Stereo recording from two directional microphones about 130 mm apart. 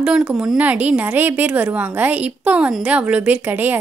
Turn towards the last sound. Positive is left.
turn(degrees=-15)  # may be behind; listen again after turning